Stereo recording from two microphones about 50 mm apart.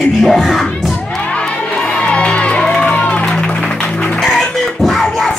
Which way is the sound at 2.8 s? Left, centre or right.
Left.